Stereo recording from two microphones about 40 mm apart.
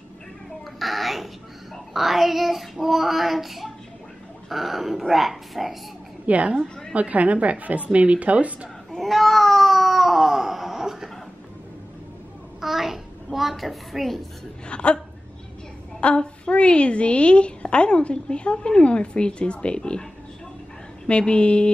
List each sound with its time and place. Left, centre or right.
0.7 s dog: centre
2.0 s child singing: centre
6.2 s a woman's voice: right
8.9 s cat: centre
12.5 s a sound: centre
14.7 s a woman's voice: left
16.0 s a woman's voice: left
21.1 s a woman's voice: left